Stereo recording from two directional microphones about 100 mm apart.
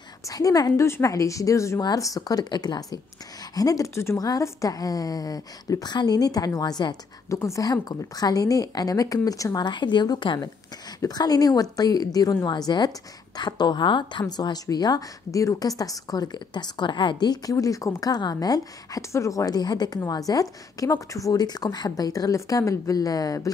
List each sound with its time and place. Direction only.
0.2 s a woman's voice: 35° left (ahead or behind)